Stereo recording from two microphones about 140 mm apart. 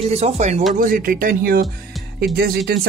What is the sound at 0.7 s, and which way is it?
Speech, 85° right.